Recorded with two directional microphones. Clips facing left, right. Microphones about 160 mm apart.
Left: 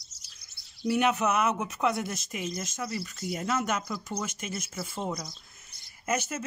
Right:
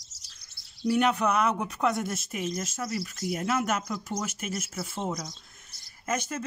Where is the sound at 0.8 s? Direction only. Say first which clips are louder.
Right 1 dB; 5° left (ahead or behind).